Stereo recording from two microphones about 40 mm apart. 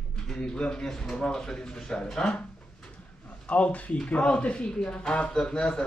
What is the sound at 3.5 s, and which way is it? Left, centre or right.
Speech, left.